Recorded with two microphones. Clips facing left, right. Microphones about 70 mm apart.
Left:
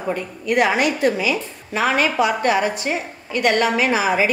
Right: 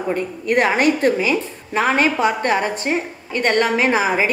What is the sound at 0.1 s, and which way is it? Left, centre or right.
A woman's voice, right.